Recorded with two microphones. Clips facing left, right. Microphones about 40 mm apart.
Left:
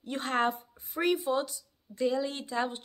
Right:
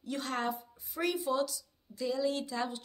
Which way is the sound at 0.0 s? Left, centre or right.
Left.